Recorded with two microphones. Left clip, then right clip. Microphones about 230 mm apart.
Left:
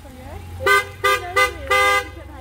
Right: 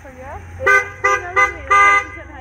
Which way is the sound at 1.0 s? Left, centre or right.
Left.